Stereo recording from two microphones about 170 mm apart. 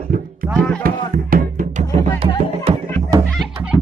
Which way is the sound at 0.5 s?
5° left (ahead or behind).